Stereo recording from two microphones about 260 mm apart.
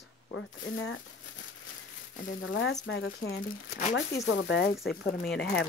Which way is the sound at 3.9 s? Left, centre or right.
Left.